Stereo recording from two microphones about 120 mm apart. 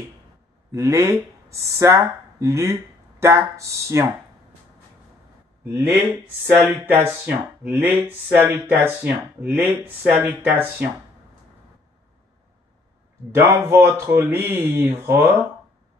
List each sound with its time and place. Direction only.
0.7 s speech: 25° right (ahead or behind)
5.7 s speech: 25° right (ahead or behind)
13.5 s speech: 20° right (ahead or behind)